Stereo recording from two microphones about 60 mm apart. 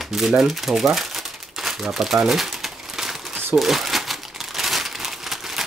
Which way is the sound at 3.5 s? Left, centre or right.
Centre.